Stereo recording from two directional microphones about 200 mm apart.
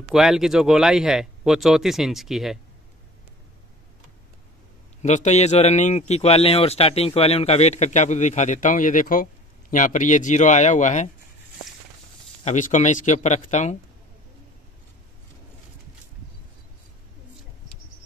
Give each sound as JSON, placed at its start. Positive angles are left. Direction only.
{"t": 0.1, "sound": "speech", "side_deg": 0}
{"t": 5.0, "sound": "speech", "side_deg": 35}
{"t": 12.4, "sound": "speech", "side_deg": 40}